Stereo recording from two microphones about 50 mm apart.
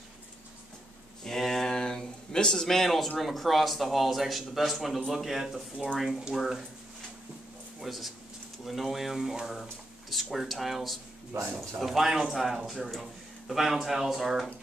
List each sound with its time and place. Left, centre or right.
1.2 s a sound: centre
3.2 s speech: centre
7.8 s speech: centre
11.3 s a man's voice: right
11.8 s speech: centre